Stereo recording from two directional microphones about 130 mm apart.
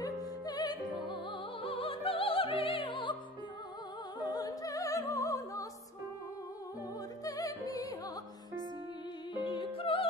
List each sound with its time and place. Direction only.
0.0 s music: 30° left (ahead or behind)
4.2 s music: 30° left (ahead or behind)
7.2 s music: 25° left (ahead or behind)
9.4 s music: 40° left (ahead or behind)